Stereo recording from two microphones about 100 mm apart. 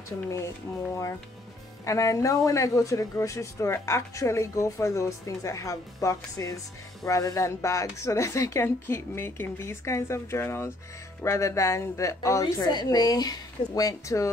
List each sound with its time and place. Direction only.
1.9 s speech: 35° left (ahead or behind)
12.6 s speech: 45° left (ahead or behind)